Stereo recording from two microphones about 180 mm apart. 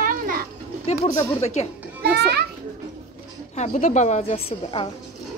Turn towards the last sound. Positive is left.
turn(degrees=35)  # may be behind; listen again after turning